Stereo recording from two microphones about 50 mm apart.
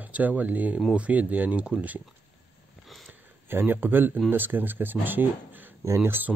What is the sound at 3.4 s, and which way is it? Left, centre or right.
Speech, right.